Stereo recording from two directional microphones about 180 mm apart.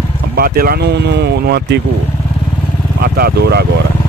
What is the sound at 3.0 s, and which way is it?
Speech, 60° right (ahead or behind).